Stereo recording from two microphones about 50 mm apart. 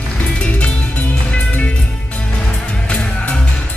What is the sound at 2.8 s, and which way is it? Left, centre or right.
Music, left.